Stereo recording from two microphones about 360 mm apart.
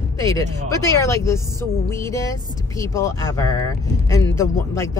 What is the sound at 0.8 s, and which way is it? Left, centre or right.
Speech, centre.